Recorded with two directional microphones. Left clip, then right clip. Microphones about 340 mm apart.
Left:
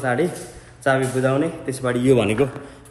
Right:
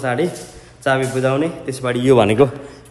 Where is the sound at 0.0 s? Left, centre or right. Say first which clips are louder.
Right 2 dB; centre.